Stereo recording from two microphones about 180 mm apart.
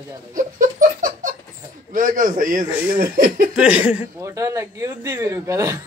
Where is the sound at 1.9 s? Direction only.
45° right (ahead or behind).